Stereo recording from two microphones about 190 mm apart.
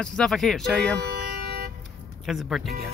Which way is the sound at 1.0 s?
60° right (ahead or behind).